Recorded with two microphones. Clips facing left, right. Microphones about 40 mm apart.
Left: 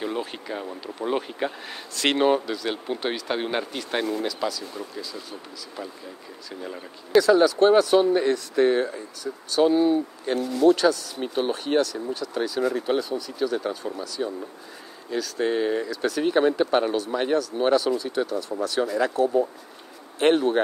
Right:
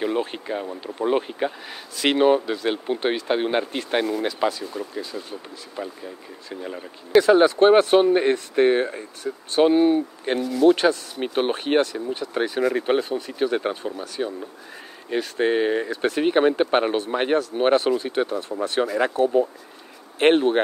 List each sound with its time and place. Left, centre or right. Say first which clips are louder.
0.0 s speech: right 5 dB; centre
2.4 s speech: right 4 dB; right
5.8 s speech: right 5 dB; centre
7.2 s speech: right 2 dB; right
10.4 s speech: right 2 dB; right
10.7 s speech: right 1 dB; right